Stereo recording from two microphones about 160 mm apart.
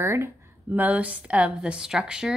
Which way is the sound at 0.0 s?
15° right (ahead or behind).